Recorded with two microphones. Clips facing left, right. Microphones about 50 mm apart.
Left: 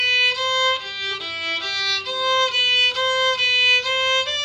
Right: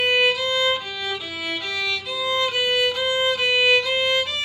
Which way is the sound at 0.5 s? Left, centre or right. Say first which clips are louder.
Left 1 dB; left.